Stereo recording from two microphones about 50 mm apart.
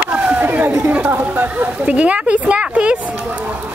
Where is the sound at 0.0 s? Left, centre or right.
Right.